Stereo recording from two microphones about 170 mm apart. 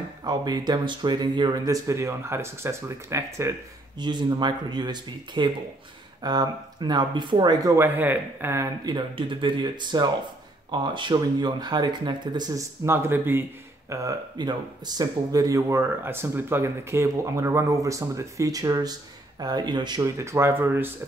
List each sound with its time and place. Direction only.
0.2 s speech: 25° right (ahead or behind)
8.8 s speech: 30° right (ahead or behind); by 20.9 s 15° right (ahead or behind)